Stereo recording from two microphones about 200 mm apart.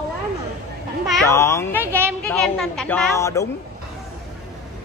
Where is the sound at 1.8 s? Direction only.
10° right (ahead or behind).